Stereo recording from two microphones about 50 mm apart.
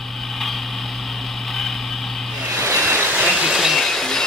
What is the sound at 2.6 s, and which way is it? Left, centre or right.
Waves, right.